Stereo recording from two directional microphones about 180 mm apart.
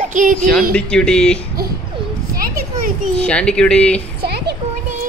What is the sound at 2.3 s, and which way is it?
Children playing, 55° right (ahead or behind).